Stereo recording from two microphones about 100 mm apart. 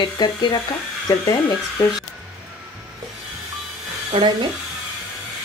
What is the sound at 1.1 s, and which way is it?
Speech, 35° left (ahead or behind).